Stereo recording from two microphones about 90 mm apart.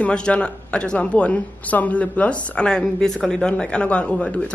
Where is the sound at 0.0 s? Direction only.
10° left (ahead or behind).